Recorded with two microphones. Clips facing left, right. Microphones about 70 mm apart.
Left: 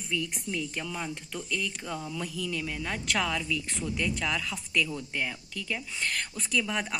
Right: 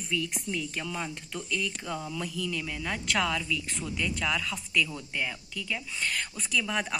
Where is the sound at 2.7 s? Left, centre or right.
Centre.